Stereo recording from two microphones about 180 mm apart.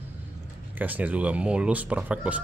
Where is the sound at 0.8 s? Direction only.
10° right (ahead or behind).